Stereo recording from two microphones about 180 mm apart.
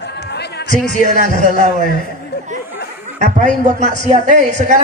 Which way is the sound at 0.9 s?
40° right (ahead or behind).